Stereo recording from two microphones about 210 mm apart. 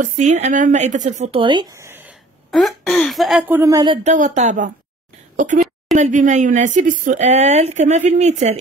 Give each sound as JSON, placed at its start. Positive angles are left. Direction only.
{"t": 0.0, "sound": "speech", "side_deg": -35}
{"t": 4.1, "sound": "speech", "side_deg": -35}